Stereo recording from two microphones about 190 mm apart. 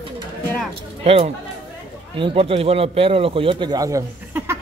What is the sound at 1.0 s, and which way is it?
A man's voice, 30° right (ahead or behind).